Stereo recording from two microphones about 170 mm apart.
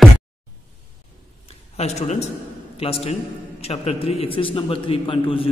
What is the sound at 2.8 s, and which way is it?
A man's voice, 35° left (ahead or behind).